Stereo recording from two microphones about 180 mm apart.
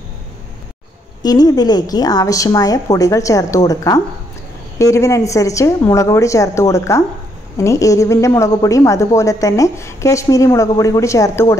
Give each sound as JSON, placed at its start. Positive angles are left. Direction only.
{"t": 1.2, "sound": "a woman's voice", "side_deg": 20}